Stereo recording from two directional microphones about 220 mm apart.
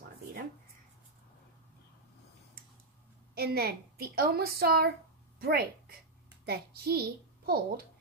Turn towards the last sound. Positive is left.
turn(degrees=-45)  # may be behind; listen again after turning